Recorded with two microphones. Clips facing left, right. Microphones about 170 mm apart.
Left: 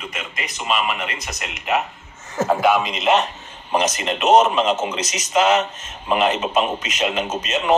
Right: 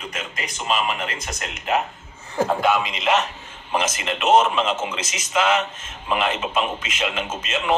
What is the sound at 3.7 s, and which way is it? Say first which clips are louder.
Speech: left 3 dB; 35° left (ahead or behind).